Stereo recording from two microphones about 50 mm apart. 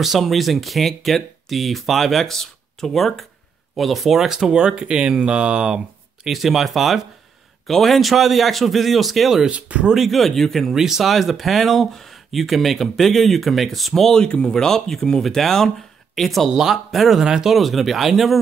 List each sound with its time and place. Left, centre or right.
0.0 s speech: centre
6.2 s speech: centre
9.5 s speech: right
9.9 s speech: centre
10.7 s speech: centre
14.2 s speech: centre